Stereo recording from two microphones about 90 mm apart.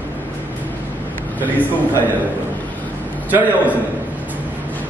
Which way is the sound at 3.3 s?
20° right (ahead or behind).